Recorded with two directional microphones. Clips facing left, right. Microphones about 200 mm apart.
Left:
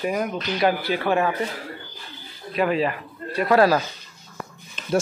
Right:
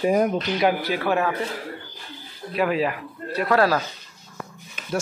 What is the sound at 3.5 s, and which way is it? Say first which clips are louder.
Speech: left 3 dB; 10° left (ahead or behind).